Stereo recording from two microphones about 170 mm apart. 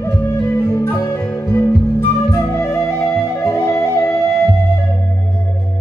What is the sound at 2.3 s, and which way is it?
Flute, 15° left (ahead or behind).